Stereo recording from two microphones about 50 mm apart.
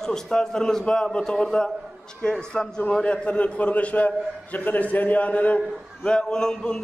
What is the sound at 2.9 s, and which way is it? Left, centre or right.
A man's voice, left.